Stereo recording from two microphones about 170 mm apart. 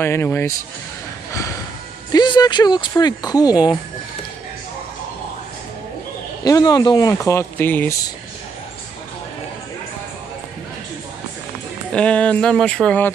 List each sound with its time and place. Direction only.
0.0 s speech: 15° left (ahead or behind)
2.1 s speech: 25° left (ahead or behind)
6.4 s speech: 20° left (ahead or behind)
11.9 s speech: 5° left (ahead or behind)